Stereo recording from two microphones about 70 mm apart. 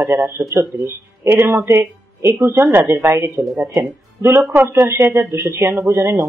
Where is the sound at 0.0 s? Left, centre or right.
Right.